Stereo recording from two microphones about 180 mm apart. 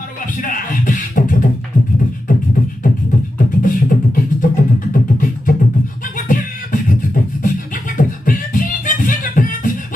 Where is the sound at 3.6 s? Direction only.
45° left (ahead or behind).